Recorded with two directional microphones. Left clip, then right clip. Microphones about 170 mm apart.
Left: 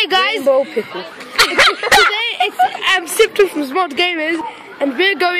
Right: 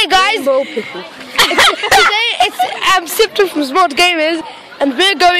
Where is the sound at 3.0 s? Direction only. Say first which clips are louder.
Right 1 dB; 25° right (ahead or behind).